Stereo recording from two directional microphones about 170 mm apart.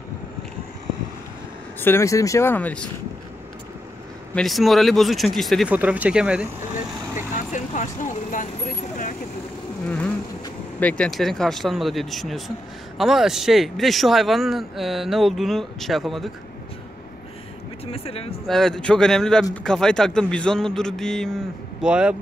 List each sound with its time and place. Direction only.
1.8 s speech: 15° left (ahead or behind)
4.4 s speech: centre (ahead or behind)
7.5 s speech: 45° left (ahead or behind)
10.8 s speech: 5° left (ahead or behind)
17.9 s speech: 35° left (ahead or behind)
18.5 s speech: 5° left (ahead or behind)